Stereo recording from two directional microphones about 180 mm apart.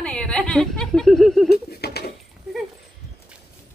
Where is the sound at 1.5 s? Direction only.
65° left (ahead or behind).